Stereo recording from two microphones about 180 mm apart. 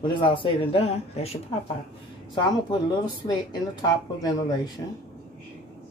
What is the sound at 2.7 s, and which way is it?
Speech, 25° left (ahead or behind).